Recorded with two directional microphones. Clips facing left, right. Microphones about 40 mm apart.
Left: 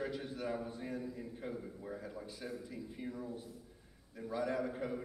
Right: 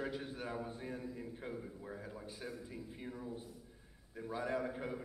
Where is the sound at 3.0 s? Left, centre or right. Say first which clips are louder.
Left 5 dB; right.